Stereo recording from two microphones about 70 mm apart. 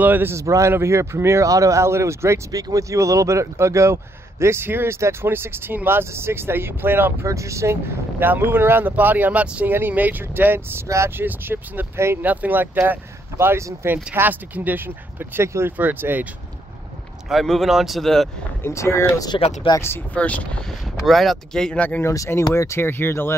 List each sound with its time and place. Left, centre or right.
0.0 s speech: right
0.3 s speech: right
2.5 s speech: right
7.2 s speech: right
8.2 s speech: right
15.8 s speech: right
17.3 s speech: centre
18.6 s speech: left
20.2 s speech: left
21.0 s speech: centre
21.7 s speech: left
22.0 s speech: left
22.8 s speech: left